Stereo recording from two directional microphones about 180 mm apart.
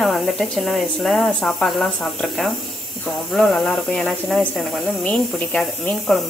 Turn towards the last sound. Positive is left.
turn(degrees=5)  # may be behind; listen again after turning